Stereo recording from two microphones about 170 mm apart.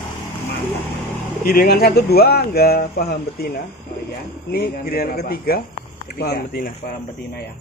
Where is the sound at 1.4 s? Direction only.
60° left (ahead or behind).